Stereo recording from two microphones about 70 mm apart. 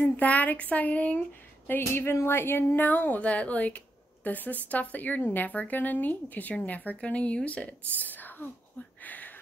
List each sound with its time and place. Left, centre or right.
0.0 s speech: left
1.7 s speech: left